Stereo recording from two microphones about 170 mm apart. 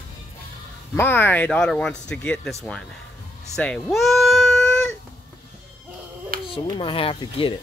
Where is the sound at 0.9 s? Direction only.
10° left (ahead or behind).